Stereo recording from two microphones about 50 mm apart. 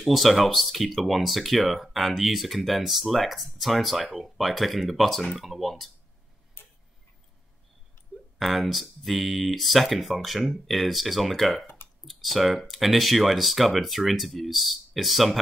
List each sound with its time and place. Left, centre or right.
0.0 s speech: centre
6.6 s tick-tock: left
8.4 s speech: centre